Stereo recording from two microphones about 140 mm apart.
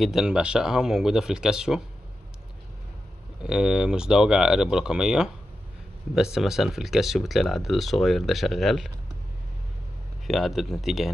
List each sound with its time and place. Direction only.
0.0 s speech: 5° right (ahead or behind)
3.4 s speech: 5° right (ahead or behind)
10.2 s speech: centre (ahead or behind)